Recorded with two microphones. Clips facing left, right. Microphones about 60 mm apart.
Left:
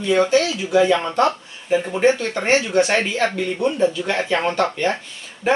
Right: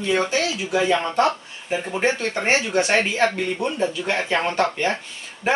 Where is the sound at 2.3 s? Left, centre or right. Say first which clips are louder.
Left 3 dB; centre.